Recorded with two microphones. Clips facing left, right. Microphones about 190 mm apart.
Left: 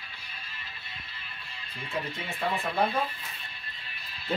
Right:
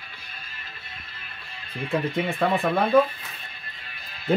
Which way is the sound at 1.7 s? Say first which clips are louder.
Right 9 dB; 55° right (ahead or behind).